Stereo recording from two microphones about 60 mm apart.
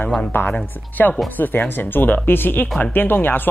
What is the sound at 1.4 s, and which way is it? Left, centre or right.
Speech, left.